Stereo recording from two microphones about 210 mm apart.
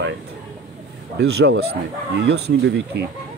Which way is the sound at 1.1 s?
50° right (ahead or behind).